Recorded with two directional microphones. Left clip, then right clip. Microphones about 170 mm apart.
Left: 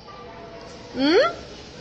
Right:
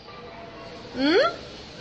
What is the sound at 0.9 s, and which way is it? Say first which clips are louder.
Speech: left 2 dB; 15° left (ahead or behind).